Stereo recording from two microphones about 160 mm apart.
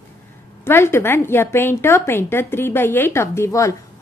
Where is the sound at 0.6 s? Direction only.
15° left (ahead or behind).